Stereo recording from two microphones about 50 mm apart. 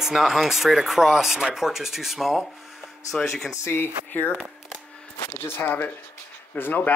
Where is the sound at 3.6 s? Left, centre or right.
Left.